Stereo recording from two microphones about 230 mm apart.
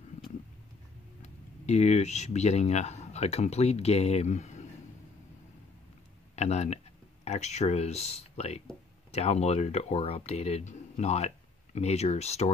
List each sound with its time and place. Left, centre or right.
1.7 s speech: left
6.3 s speech: left